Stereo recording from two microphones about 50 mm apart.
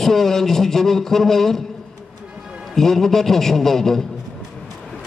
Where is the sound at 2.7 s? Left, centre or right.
Centre.